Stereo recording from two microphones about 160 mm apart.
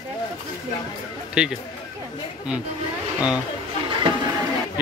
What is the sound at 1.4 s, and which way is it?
Speech, 5° right (ahead or behind).